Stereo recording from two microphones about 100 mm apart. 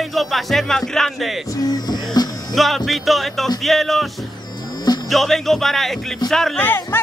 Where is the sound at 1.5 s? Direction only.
40° left (ahead or behind).